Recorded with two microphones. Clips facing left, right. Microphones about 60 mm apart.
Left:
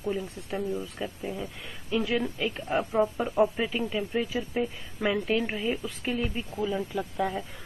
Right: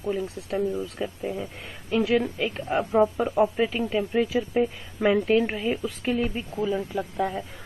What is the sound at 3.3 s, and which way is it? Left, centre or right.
Speech, centre.